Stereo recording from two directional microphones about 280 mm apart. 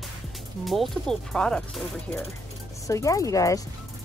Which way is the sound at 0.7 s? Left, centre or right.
Centre.